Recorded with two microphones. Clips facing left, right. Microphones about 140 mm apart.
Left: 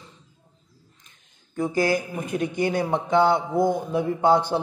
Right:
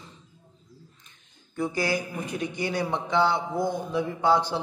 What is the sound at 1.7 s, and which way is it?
A man's voice, 50° left (ahead or behind).